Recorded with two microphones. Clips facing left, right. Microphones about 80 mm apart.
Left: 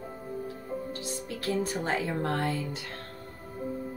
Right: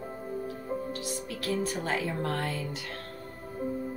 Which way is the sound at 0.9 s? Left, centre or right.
Left.